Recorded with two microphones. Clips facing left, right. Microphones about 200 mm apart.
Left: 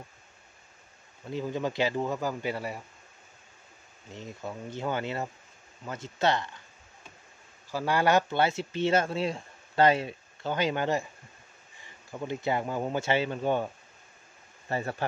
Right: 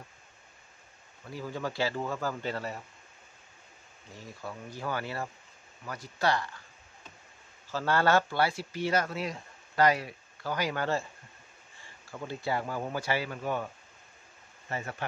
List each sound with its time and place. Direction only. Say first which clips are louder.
1.3 s a man's voice: left 5 dB; 20° left (ahead or behind)
4.1 s speech: left 4 dB; 20° left (ahead or behind)
7.7 s speech: left 1 dB; 15° left (ahead or behind)
14.7 s speech: left 5 dB; 35° left (ahead or behind)